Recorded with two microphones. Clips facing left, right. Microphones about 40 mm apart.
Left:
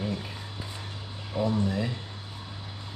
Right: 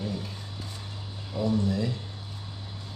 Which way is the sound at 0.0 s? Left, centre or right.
Left.